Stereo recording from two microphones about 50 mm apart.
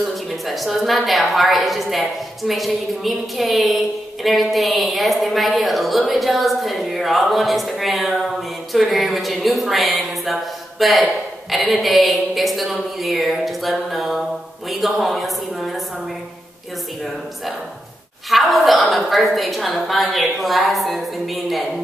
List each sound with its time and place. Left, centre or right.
0.0 s a woman's voice: centre
18.3 s a woman's voice: centre